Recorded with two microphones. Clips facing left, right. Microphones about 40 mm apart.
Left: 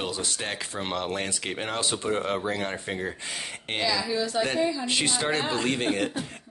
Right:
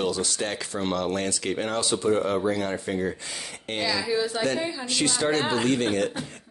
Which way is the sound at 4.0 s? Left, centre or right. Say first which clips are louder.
Right 1 dB; centre.